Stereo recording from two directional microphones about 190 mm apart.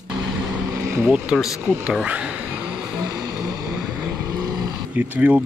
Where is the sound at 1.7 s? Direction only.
5° right (ahead or behind).